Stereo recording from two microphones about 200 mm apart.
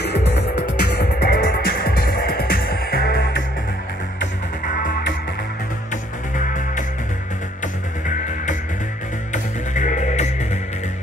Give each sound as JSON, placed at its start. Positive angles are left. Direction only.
{"t": 0.0, "sound": "music", "side_deg": 55}
{"t": 6.3, "sound": "music", "side_deg": 40}
{"t": 9.3, "sound": "music", "side_deg": 40}